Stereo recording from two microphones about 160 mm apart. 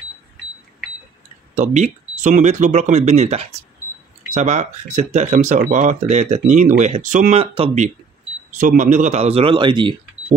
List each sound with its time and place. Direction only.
1.6 s speech: 50° right (ahead or behind)
8.5 s speech: 55° right (ahead or behind); by 9.9 s 30° right (ahead or behind)